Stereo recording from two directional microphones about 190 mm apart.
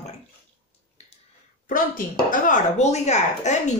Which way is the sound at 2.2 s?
45° left (ahead or behind).